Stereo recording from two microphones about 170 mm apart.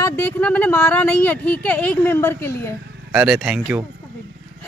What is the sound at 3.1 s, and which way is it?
Speech, 5° right (ahead or behind).